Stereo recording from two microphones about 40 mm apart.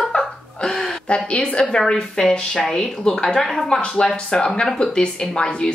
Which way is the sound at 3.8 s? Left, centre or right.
Left.